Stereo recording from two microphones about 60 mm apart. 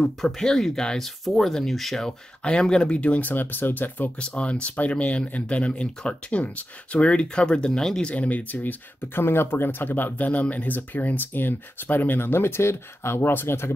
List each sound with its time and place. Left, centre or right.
0.0 s speech: centre
2.4 s speech: centre; by 4.1 s left
4.2 s speech: centre
8.1 s speech: left
9.2 s speech: left